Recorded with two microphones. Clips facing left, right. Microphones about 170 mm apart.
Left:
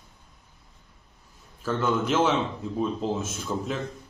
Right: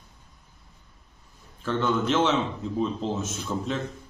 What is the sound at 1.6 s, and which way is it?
A man's voice, 5° left (ahead or behind).